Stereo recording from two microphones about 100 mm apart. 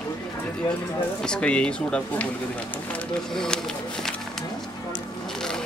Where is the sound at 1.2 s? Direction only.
10° left (ahead or behind).